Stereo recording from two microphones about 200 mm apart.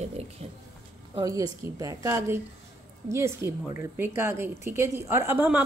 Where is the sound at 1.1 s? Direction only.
20° right (ahead or behind).